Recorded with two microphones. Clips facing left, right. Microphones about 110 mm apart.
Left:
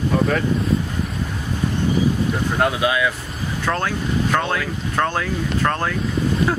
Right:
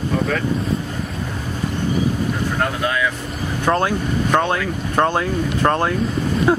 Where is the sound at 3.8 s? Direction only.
15° right (ahead or behind).